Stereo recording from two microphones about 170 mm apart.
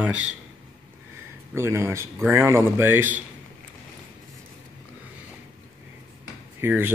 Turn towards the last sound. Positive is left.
turn(degrees=-10)  # may be behind; listen again after turning